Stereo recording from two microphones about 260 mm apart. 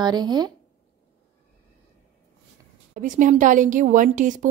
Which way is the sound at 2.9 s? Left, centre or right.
Right.